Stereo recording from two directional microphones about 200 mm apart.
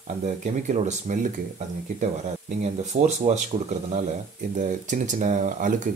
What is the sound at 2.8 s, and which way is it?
Speech, 35° right (ahead or behind).